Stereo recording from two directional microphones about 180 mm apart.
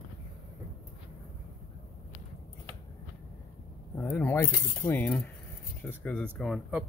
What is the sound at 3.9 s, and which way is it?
Speech, 10° left (ahead or behind).